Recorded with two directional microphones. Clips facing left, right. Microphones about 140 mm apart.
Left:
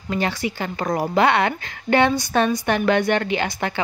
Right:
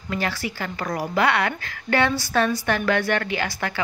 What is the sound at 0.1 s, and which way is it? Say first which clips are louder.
A woman's voice: left 3 dB; 20° left (ahead or behind).